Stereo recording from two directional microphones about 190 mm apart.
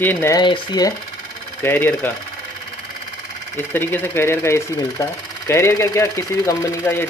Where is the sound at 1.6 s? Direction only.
10° left (ahead or behind).